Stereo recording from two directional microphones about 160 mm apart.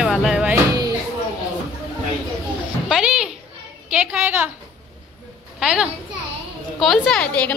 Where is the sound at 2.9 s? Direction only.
5° right (ahead or behind).